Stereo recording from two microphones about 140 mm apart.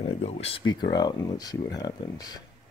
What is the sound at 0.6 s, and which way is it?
Speech, 30° left (ahead or behind).